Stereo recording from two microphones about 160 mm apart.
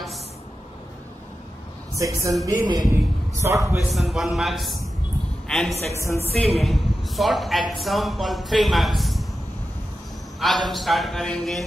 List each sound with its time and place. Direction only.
2.0 s a man's voice: 20° right (ahead or behind)
3.7 s a woman's voice: centre (ahead or behind)
6.0 s speech: 15° left (ahead or behind)
6.3 s a woman's voice: centre (ahead or behind)
10.7 s a woman's voice: centre (ahead or behind)